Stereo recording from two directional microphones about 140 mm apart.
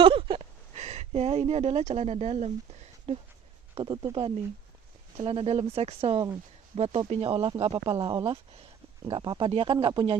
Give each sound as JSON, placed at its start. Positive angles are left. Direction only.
{"t": 0.0, "sound": "speech", "side_deg": -40}
{"t": 3.7, "sound": "speech", "side_deg": -30}
{"t": 5.1, "sound": "speech", "side_deg": -45}